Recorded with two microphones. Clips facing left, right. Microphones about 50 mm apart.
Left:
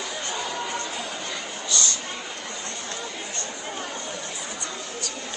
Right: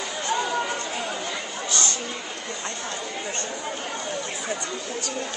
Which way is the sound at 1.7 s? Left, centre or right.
Right.